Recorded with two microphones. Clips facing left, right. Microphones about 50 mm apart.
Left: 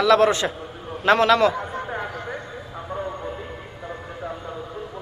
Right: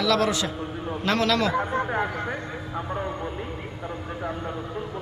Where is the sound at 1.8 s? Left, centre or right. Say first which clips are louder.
Right 3 dB; right.